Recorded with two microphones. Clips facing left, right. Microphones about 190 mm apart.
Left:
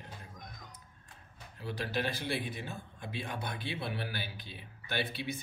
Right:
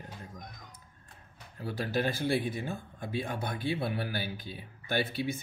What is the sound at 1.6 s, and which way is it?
Speech, 45° right (ahead or behind).